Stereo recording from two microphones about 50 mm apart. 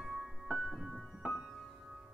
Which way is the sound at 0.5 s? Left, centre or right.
Centre.